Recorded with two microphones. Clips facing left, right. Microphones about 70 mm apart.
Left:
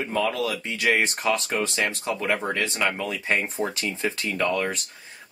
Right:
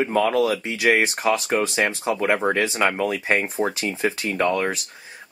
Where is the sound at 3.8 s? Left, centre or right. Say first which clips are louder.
Right 4 dB; right.